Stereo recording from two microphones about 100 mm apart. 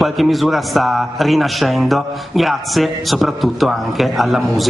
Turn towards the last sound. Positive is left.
turn(degrees=0)  # may be behind; listen again after turning